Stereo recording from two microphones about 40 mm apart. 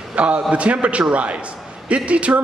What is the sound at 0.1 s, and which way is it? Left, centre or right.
A man's voice, right.